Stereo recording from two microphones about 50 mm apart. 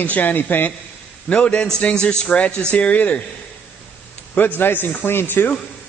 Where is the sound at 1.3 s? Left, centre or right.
Left.